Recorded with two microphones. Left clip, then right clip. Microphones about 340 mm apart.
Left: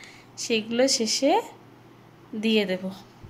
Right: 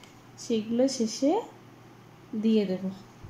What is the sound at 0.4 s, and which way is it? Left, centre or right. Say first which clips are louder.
A woman's voice: left 4 dB; left.